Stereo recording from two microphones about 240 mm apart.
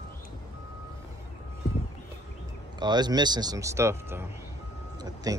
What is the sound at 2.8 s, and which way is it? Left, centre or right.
Speech, centre.